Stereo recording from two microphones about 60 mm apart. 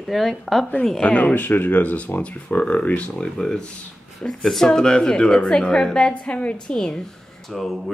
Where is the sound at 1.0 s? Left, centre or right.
Left.